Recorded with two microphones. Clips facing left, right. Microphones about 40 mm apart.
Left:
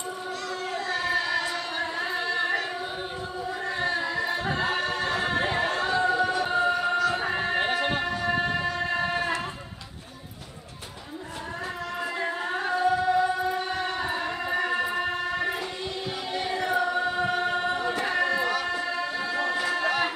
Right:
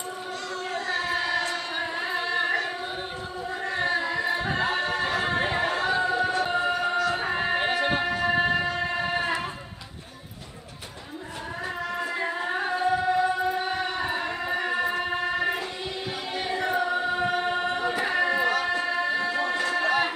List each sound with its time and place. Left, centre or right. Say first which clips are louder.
0.7 s a sound: even; centre
1.8 s music: even; centre
3.6 s a sound: right 2 dB; centre
4.0 s chatter: right 1 dB; centre
6.6 s music: left 1 dB; centre
8.9 s a sound: even; centre
12.0 s music: left 1 dB; centre
16.3 s choir: even; centre
17.3 s music: even; centre
19.2 s music: right 1 dB; centre